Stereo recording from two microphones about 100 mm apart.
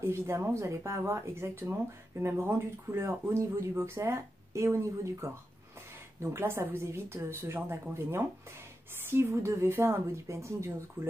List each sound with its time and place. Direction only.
0.0 s speech: 25° right (ahead or behind)
9.1 s speech: 30° right (ahead or behind)